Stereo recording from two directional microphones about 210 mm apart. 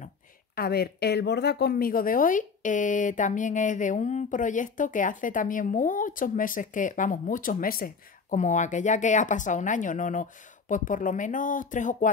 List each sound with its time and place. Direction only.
0.6 s speech: 50° left (ahead or behind)